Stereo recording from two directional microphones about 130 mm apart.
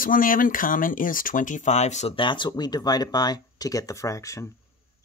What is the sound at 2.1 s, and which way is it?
Speech, 40° left (ahead or behind).